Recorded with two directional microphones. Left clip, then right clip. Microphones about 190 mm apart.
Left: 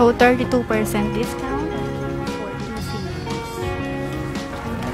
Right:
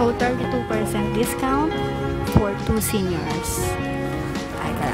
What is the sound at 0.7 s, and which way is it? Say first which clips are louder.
Speech: left 2 dB; 5° left (ahead or behind).